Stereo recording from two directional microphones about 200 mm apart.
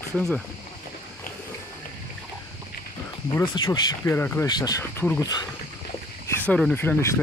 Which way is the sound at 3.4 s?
20° left (ahead or behind).